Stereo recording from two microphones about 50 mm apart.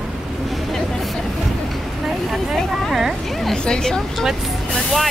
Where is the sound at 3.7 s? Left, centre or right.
Centre.